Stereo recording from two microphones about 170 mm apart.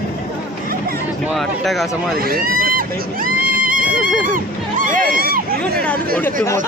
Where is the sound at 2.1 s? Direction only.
60° right (ahead or behind).